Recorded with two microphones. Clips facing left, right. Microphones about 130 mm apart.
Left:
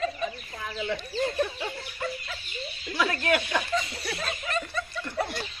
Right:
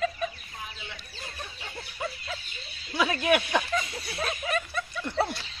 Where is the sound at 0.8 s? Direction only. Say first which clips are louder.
Left 15 dB; 80° left.